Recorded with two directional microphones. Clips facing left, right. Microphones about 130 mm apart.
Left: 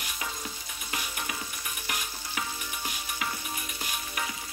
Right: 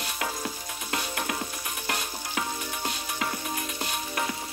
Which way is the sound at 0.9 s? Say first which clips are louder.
Right 5 dB; 65° right (ahead or behind).